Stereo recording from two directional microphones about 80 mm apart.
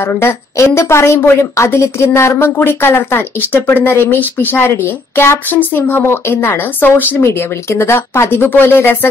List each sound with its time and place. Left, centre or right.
0.0 s a woman's voice: left